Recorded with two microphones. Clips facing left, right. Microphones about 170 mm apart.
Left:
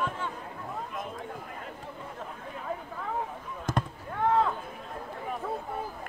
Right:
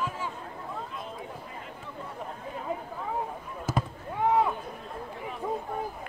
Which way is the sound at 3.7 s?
10° right (ahead or behind).